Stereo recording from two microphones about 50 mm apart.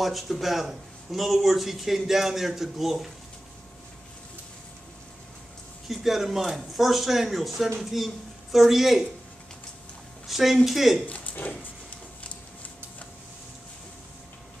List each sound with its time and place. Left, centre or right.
0.0 s speech: centre
5.9 s speech: centre
10.2 s speech: centre
11.1 s speech: left